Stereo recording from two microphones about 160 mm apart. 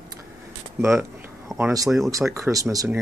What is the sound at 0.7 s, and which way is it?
Speech, 15° right (ahead or behind).